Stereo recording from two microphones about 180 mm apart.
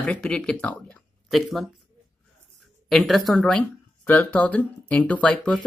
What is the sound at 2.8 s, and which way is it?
Speech, centre (ahead or behind).